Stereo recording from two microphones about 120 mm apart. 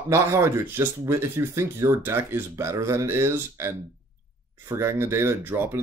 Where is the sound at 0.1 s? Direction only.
25° right (ahead or behind).